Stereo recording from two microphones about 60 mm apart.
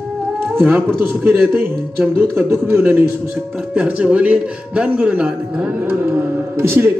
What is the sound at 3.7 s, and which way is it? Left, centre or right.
A man's voice, right.